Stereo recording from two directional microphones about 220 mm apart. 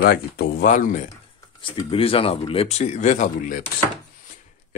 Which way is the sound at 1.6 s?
25° left (ahead or behind).